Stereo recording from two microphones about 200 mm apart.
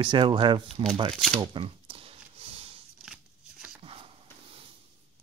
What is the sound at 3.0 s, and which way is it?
Shuffling cards, 5° right (ahead or behind).